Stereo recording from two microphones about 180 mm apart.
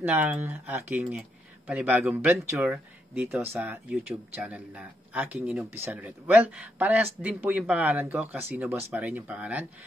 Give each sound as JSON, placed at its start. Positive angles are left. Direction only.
{"t": 0.0, "sound": "speech", "side_deg": -10}